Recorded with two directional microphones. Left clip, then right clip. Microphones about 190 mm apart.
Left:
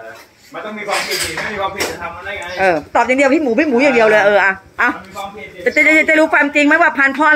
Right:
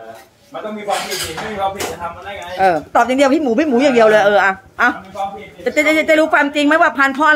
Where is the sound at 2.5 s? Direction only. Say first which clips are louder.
Right 1 dB; 5° right (ahead or behind).